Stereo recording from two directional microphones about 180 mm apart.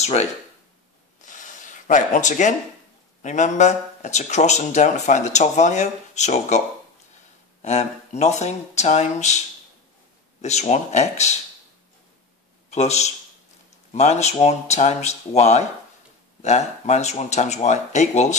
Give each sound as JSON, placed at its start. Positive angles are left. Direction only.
{"t": 0.0, "sound": "speech", "side_deg": 35}
{"t": 1.2, "sound": "a sound", "side_deg": 45}
{"t": 3.2, "sound": "speech", "side_deg": 45}
{"t": 7.6, "sound": "speech", "side_deg": 40}
{"t": 10.4, "sound": "speech", "side_deg": 40}
{"t": 12.6, "sound": "speech", "side_deg": 40}